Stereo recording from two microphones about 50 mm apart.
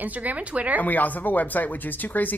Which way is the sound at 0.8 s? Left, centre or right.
Left.